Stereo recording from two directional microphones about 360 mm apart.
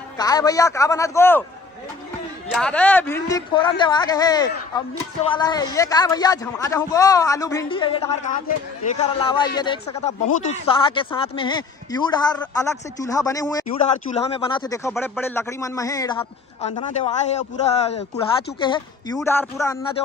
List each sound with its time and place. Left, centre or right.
0.2 s speech: centre
2.5 s speech: centre